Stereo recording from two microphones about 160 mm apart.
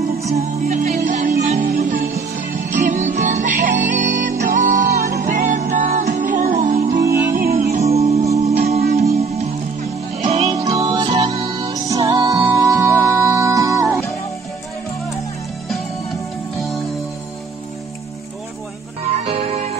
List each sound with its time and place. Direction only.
0.4 s music: 45° right (ahead or behind)
0.9 s music: 55° right (ahead or behind)
2.5 s music: 50° right (ahead or behind)
7.6 s music: 45° right (ahead or behind)
10.5 s music: 20° right (ahead or behind)
16.5 s music: centre (ahead or behind)
19.2 s music: 40° right (ahead or behind)